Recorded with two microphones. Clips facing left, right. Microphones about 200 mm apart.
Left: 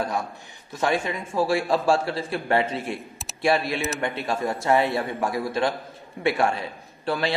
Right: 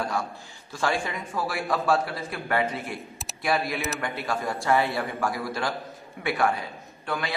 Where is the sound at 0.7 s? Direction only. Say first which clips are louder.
Left 3 dB; 20° left (ahead or behind).